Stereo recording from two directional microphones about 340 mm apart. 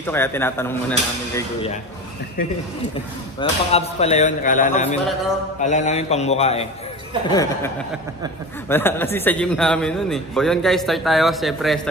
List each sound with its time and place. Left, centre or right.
0.0 s speech: centre
3.3 s a man's voice: centre